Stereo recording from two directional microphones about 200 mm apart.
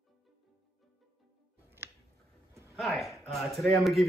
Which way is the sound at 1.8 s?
10° right (ahead or behind).